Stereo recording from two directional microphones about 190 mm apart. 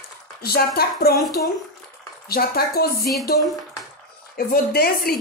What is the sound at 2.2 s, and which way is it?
Speech, 55° left (ahead or behind).